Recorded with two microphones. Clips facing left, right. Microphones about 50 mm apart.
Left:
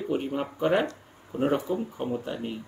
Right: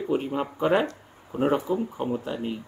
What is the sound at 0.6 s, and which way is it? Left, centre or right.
A man's voice, right.